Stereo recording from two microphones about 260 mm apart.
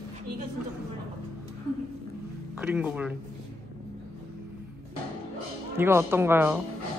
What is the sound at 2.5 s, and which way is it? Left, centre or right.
Speech, centre.